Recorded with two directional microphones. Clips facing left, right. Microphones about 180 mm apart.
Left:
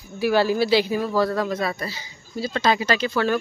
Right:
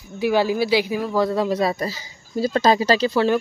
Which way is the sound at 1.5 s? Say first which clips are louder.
Right 5 dB; 35° right (ahead or behind).